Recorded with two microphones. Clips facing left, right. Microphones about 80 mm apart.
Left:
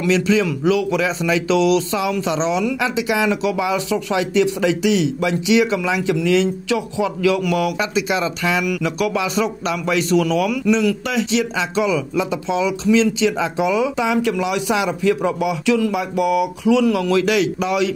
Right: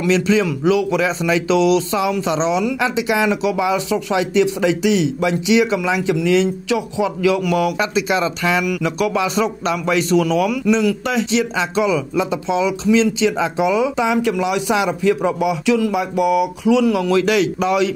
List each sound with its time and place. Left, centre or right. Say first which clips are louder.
0.0 s a man's voice: right 1 dB; right
7.7 s speech: right 2 dB; right
8.6 s a man's voice: right 1 dB; right
17.2 s speech: right 1 dB; right